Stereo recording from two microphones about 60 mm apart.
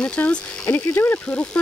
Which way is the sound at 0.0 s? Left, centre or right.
Left.